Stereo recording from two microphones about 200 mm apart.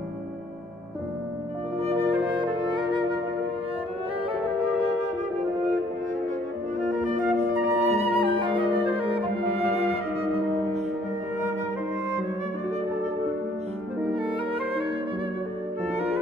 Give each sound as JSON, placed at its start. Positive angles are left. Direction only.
{"t": 1.8, "sound": "music", "side_deg": -30}
{"t": 6.8, "sound": "music", "side_deg": -40}
{"t": 15.9, "sound": "music", "side_deg": -30}